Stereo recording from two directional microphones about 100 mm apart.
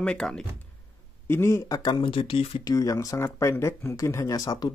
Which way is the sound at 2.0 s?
60° left (ahead or behind).